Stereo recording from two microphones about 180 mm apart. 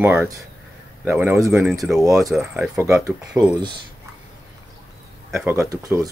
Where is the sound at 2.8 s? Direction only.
15° right (ahead or behind).